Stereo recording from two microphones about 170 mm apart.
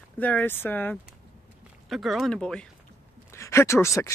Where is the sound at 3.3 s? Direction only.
15° left (ahead or behind).